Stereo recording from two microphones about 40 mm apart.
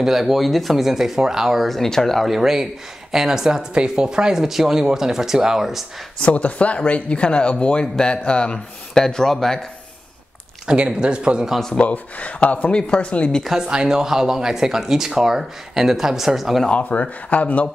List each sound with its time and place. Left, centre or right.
0.0 s speech: centre
1.7 s speech: centre
2.2 s speech: centre
6.1 s speech: left
8.9 s speech: centre
11.0 s speech: right
11.8 s speech: left
12.7 s speech: left
13.6 s speech: centre
16.7 s speech: left